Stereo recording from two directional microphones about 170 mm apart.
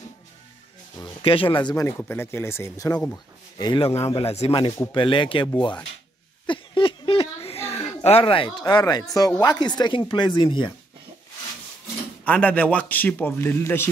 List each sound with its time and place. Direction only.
0.9 s a man's voice: 30° left (ahead or behind)
6.4 s a sound: 30° left (ahead or behind)
9.4 s speech: 25° left (ahead or behind)
12.3 s a man's voice: 10° left (ahead or behind)